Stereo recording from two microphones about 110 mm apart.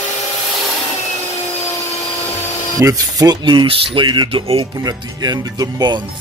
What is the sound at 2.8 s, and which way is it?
Speech, 30° right (ahead or behind).